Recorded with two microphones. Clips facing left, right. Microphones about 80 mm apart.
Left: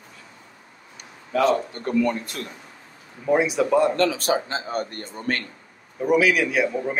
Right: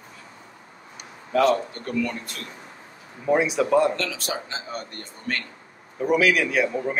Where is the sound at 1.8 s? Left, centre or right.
Left.